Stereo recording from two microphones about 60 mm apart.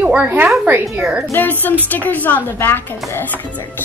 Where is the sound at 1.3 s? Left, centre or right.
Left.